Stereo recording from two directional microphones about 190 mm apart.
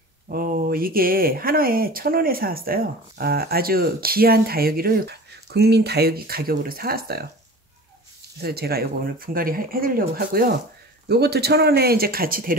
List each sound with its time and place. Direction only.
0.3 s speech: 50° right (ahead or behind)
8.4 s speech: 55° right (ahead or behind)